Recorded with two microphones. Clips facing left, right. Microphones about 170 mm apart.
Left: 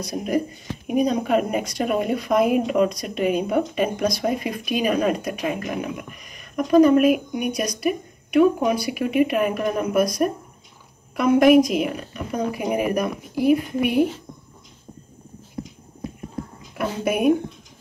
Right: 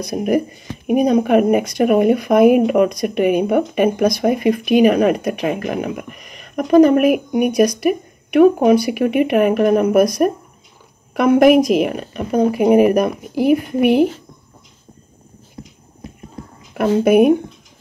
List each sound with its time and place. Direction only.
0.0 s speech: 60° right (ahead or behind)
16.7 s speech: 55° right (ahead or behind)